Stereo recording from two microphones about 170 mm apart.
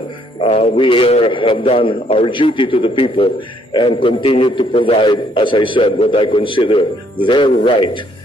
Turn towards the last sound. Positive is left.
turn(degrees=30)  # may be behind; listen again after turning